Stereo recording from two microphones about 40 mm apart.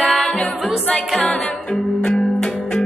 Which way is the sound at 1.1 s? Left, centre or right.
Centre.